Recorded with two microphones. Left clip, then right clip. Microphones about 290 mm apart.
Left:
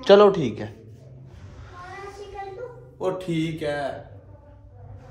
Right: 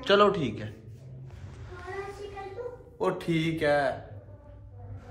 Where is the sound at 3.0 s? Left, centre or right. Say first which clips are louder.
Left 2 dB; centre.